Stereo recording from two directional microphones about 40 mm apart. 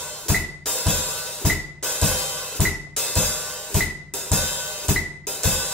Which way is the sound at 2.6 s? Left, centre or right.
Centre.